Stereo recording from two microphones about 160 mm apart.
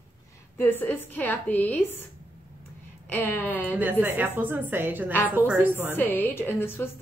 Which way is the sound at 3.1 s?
10° left (ahead or behind).